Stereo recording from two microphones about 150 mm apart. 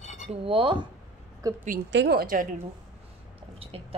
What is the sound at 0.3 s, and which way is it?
Speech, 35° right (ahead or behind).